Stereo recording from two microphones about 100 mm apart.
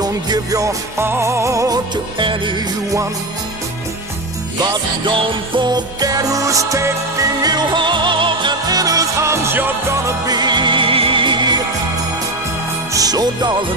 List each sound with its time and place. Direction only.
0.0 s music: 35° right (ahead or behind)
2.1 s music: 55° right (ahead or behind)
4.6 s music: 40° right (ahead or behind)
7.4 s music: 50° right (ahead or behind); by 10.1 s 25° right (ahead or behind)
10.2 s music: 45° right (ahead or behind)
12.9 s music: 40° right (ahead or behind)